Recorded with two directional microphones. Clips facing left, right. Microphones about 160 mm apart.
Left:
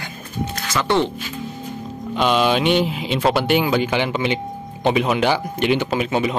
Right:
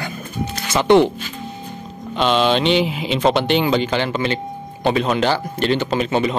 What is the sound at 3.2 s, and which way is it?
A man's voice, 5° left (ahead or behind).